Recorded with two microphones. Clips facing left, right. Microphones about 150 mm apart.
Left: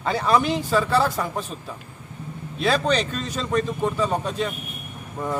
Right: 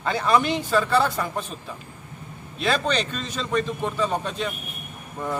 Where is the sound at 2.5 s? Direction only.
Centre (ahead or behind).